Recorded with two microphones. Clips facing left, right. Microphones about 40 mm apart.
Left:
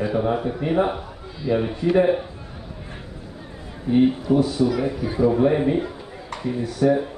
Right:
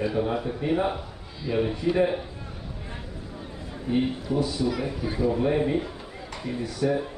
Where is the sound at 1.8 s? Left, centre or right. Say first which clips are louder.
Left 6 dB; left.